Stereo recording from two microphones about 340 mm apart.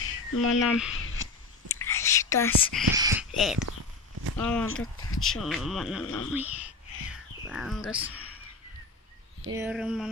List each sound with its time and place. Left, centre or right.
0.0 s a sound: left
0.7 s speech: centre
1.7 s whispering: centre
3.0 s speech: centre
7.1 s a sound: centre
9.6 s speech: centre